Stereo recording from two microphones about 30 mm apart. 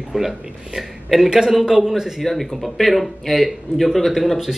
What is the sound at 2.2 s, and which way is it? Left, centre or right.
Speech, centre.